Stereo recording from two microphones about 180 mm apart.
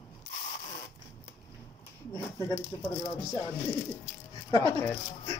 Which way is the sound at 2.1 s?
15° left (ahead or behind).